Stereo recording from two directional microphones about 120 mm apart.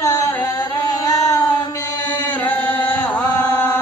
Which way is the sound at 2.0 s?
15° left (ahead or behind).